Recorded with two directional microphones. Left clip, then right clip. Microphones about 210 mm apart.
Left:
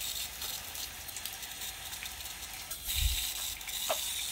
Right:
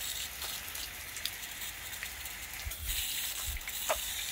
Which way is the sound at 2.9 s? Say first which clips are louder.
Left 2 dB; 55° left (ahead or behind).